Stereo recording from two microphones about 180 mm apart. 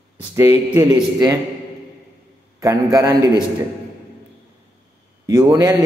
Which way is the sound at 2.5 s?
20° right (ahead or behind).